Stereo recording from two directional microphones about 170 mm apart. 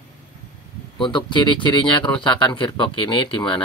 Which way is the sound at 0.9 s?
25° left (ahead or behind).